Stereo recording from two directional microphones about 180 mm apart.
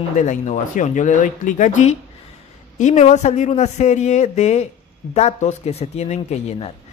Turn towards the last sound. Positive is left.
turn(degrees=35)  # may be behind; listen again after turning